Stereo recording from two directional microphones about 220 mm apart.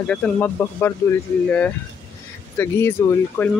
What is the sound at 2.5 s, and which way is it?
Speech, 10° left (ahead or behind).